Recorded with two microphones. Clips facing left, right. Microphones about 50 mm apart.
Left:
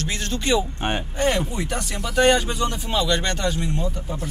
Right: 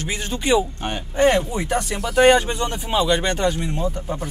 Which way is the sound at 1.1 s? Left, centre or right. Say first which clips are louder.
Right 8 dB; right.